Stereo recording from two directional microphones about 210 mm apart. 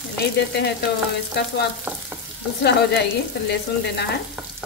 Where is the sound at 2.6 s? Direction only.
50° left (ahead or behind).